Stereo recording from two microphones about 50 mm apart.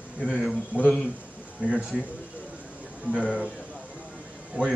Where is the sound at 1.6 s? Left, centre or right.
Right.